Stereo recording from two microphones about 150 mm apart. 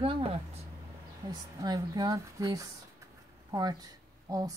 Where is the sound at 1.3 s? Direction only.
25° right (ahead or behind).